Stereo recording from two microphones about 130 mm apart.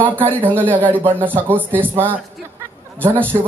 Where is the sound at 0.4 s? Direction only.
15° right (ahead or behind).